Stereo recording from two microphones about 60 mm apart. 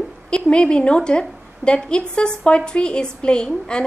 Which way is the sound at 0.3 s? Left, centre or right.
Centre.